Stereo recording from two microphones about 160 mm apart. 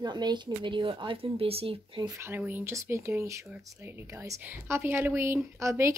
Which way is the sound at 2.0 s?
15° right (ahead or behind).